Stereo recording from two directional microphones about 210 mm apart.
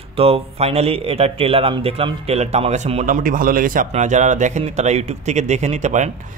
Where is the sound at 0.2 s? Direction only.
30° right (ahead or behind).